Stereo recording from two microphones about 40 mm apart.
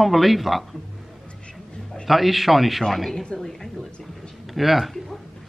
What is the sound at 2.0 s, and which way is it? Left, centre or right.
Speech, centre.